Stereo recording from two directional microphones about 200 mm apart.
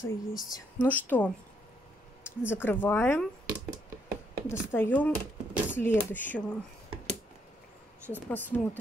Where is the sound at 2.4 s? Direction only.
10° left (ahead or behind).